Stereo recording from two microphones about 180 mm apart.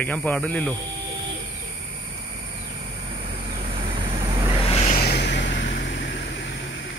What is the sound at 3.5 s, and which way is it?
Vehicle, 30° right (ahead or behind).